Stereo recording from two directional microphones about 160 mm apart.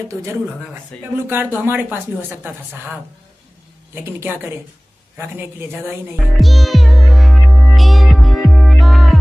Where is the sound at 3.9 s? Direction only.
15° right (ahead or behind).